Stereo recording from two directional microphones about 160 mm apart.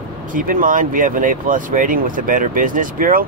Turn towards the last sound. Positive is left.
turn(degrees=-60)  # may be behind; listen again after turning